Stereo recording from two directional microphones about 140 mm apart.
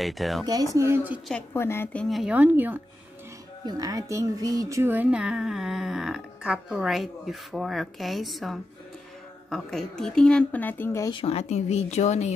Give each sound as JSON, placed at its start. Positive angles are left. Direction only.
{"t": 0.0, "sound": "a child's voice", "side_deg": 0}
{"t": 0.7, "sound": "speech", "side_deg": -15}
{"t": 1.3, "sound": "a woman's voice", "side_deg": 15}
{"t": 2.3, "sound": "speech", "side_deg": -15}
{"t": 3.6, "sound": "a child's voice", "side_deg": -25}
{"t": 11.1, "sound": "speech", "side_deg": 40}